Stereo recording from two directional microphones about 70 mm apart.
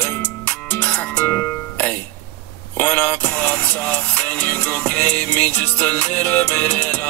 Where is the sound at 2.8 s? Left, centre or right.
Left.